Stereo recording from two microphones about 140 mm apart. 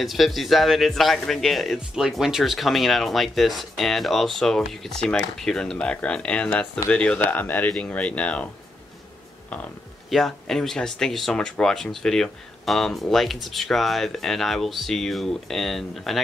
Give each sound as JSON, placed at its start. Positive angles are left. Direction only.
{"t": 0.0, "sound": "speech", "side_deg": 0}
{"t": 10.0, "sound": "speech", "side_deg": 0}